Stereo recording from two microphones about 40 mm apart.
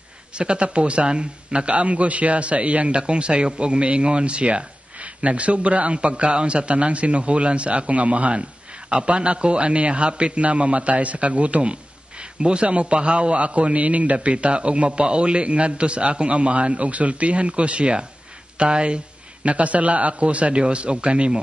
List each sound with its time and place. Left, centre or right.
0.3 s a man's voice: right